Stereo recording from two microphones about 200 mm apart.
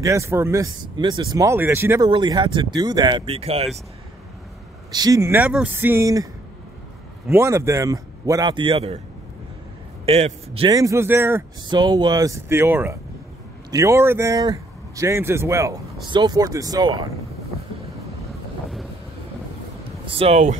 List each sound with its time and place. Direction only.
0.0 s speech: 15° right (ahead or behind); by 3.6 s 30° right (ahead or behind)
4.9 s speech: 15° right (ahead or behind)
7.3 s speech: 15° right (ahead or behind)
10.0 s speech: 30° right (ahead or behind)
10.7 s speech: 15° right (ahead or behind)
20.1 s speech: 30° right (ahead or behind)